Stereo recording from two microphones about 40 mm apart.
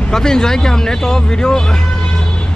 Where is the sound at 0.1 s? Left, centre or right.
Centre.